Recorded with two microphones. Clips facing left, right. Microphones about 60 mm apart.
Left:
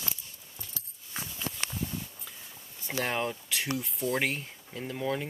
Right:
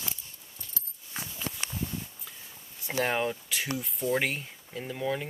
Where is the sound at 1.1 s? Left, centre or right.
Centre.